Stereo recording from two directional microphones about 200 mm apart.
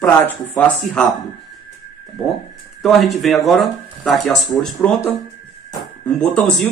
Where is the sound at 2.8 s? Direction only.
Centre (ahead or behind).